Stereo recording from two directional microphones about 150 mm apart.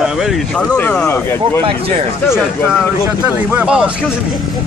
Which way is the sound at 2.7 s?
5° right (ahead or behind).